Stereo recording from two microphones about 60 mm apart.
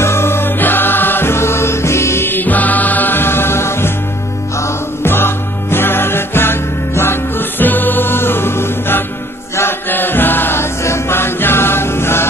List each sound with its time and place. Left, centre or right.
0.0 s music: left